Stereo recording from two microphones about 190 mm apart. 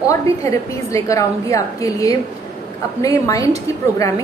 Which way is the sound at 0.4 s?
15° left (ahead or behind).